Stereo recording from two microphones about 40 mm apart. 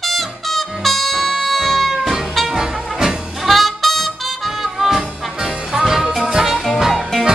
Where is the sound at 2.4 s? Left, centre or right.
Centre.